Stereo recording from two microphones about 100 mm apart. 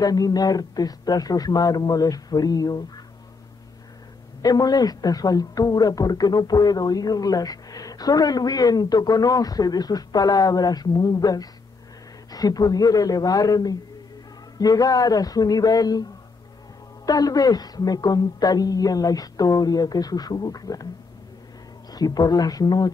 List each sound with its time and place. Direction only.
0.0 s speech: 40° left (ahead or behind)
4.4 s speech: 40° left (ahead or behind)
21.9 s speech: 40° left (ahead or behind)